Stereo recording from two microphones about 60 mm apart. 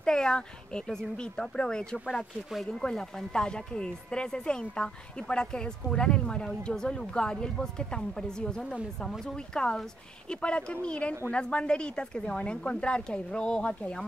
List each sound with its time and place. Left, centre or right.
0.0 s speech: centre